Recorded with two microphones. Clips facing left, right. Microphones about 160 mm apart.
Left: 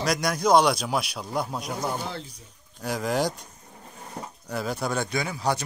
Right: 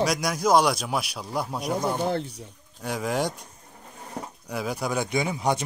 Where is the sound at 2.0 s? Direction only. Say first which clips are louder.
Right 9 dB; 60° right (ahead or behind).